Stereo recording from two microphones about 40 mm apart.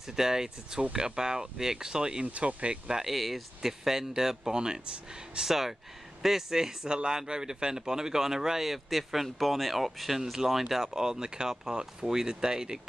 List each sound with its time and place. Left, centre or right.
0.0 s speech: centre
2.2 s speech: right
3.1 s speech: centre
5.4 s speech: centre